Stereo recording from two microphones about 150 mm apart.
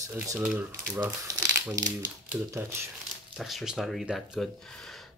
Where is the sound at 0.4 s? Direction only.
10° right (ahead or behind).